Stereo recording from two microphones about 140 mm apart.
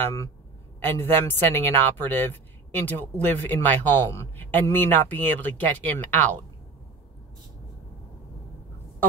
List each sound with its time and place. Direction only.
0.0 s a man's voice: 20° left (ahead or behind)